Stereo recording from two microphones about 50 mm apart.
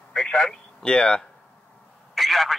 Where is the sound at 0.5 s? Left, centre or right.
Centre.